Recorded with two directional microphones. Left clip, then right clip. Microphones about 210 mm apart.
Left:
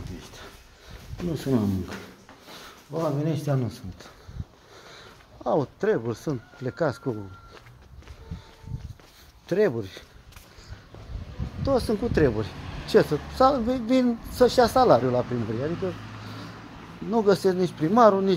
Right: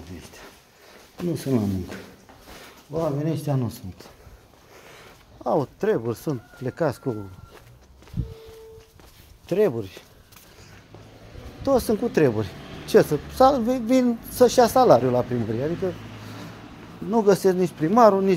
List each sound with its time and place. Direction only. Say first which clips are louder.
1.3 s speech: right 1 dB; 5° right (ahead or behind)
2.9 s speech: right 2 dB; 10° right (ahead or behind)
9.5 s speech: right 2 dB; 15° right (ahead or behind)
11.6 s speech: right 3 dB; 30° right (ahead or behind)
17.1 s speech: right 3 dB; 20° right (ahead or behind)